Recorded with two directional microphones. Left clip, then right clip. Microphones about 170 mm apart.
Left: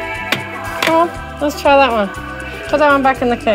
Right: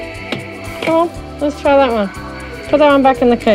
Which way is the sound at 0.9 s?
20° right (ahead or behind).